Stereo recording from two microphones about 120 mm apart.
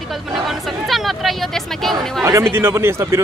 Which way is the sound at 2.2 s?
20° right (ahead or behind).